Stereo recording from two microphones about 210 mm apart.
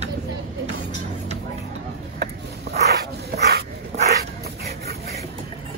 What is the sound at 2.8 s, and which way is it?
Dog, 50° right (ahead or behind).